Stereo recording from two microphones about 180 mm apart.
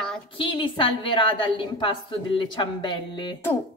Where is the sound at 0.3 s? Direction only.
30° left (ahead or behind).